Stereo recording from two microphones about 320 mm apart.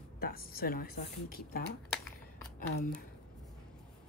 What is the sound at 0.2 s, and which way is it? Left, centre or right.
Speech, left.